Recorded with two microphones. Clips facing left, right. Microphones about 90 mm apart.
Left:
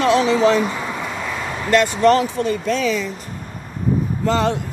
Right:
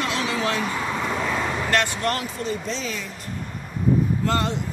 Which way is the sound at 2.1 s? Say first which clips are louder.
Left 10 dB; 80° left.